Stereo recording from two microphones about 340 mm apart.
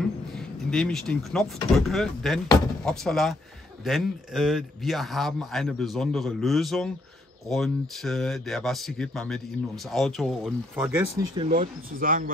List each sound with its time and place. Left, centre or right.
0.3 s a man's voice: centre
11.3 s speech: right